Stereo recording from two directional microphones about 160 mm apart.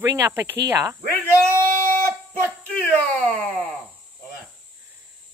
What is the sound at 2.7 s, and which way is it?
Speech, 5° left (ahead or behind).